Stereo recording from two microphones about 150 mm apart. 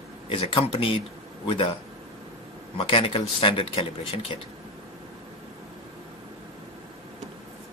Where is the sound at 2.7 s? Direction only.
35° left (ahead or behind).